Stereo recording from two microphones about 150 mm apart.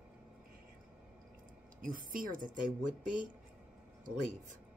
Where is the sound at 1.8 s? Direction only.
70° right (ahead or behind).